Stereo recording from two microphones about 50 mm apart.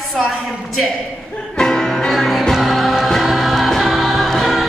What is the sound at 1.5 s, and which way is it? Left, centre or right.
Music, centre.